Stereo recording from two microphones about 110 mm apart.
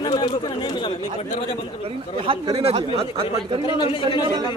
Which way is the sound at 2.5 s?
65° right (ahead or behind).